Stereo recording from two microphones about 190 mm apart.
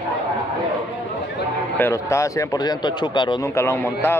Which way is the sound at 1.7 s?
15° left (ahead or behind).